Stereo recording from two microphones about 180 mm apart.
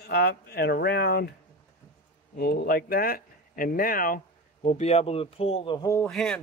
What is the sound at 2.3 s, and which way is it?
Speech, 60° left (ahead or behind).